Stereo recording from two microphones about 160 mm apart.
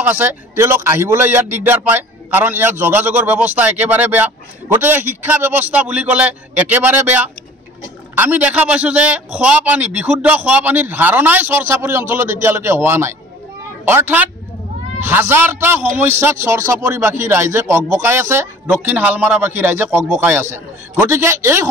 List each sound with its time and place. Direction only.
0.0 s a man's voice: 10° right (ahead or behind)